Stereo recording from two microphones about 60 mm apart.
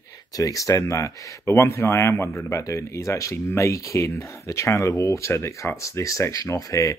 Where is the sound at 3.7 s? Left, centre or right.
Left.